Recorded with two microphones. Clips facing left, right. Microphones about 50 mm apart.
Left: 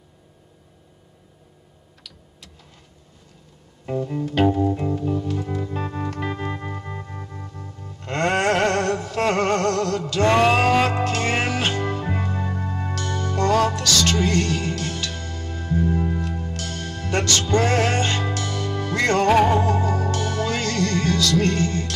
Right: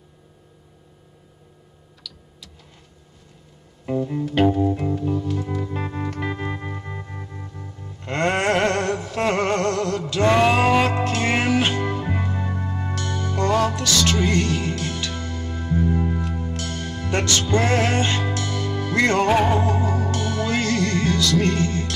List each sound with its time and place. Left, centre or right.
3.9 s music: centre